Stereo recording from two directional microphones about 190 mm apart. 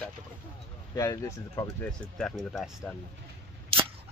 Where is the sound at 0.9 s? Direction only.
15° left (ahead or behind).